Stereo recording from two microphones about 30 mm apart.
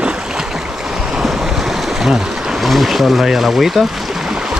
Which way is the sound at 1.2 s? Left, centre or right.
Centre.